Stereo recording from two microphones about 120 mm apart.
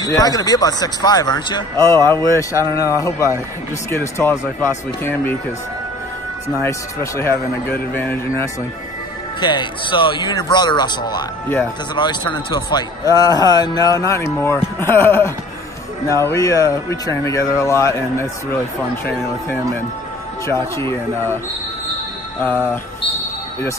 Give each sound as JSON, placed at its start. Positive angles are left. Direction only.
{"t": 0.0, "sound": "a man's voice", "side_deg": 30}
{"t": 1.8, "sound": "speech", "side_deg": 25}
{"t": 6.6, "sound": "a man's voice", "side_deg": 20}
{"t": 9.4, "sound": "a man's voice", "side_deg": 40}
{"t": 20.4, "sound": "speech", "side_deg": 25}